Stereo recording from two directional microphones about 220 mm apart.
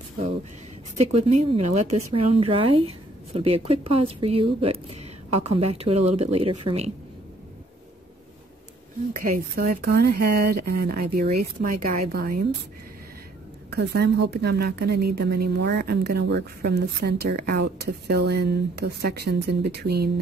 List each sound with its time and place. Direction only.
0.9 s speech: 30° right (ahead or behind)
9.2 s a woman's voice: 45° right (ahead or behind)
13.7 s a woman's voice: 50° right (ahead or behind)